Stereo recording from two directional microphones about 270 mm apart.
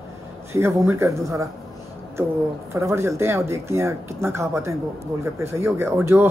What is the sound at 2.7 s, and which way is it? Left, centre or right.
Speech, centre.